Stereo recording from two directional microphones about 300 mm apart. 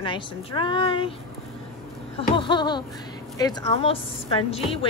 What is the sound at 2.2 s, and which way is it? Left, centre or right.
A woman's voice, centre.